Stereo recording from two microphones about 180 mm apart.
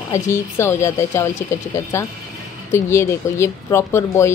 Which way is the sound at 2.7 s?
15° left (ahead or behind).